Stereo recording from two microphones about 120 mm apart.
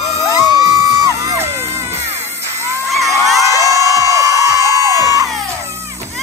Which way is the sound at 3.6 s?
25° right (ahead or behind).